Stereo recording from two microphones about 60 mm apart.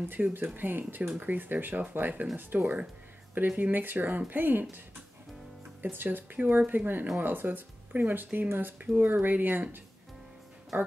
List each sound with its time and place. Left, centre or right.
0.1 s speech: right